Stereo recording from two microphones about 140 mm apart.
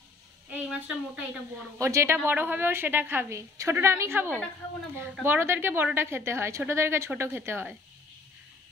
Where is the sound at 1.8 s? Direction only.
20° right (ahead or behind).